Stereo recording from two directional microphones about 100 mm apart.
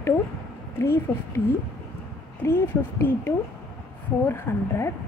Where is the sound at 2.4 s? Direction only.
25° left (ahead or behind).